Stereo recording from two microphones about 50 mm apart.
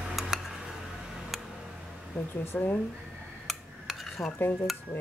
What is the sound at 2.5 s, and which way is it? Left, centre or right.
Speech, left.